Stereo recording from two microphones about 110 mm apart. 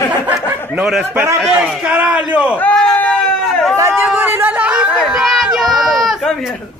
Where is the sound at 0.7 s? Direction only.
5° right (ahead or behind).